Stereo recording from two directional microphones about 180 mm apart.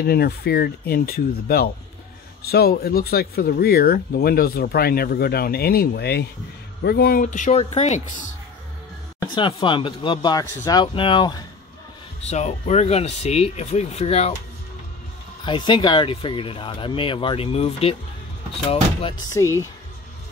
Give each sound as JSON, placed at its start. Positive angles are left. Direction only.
{"t": 0.0, "sound": "speech", "side_deg": 60}
{"t": 9.3, "sound": "speech", "side_deg": 25}
{"t": 12.3, "sound": "speech", "side_deg": 40}
{"t": 15.4, "sound": "speech", "side_deg": 25}
{"t": 19.3, "sound": "speech", "side_deg": 15}